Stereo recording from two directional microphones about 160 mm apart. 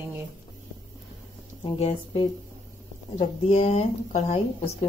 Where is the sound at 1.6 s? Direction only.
30° left (ahead or behind).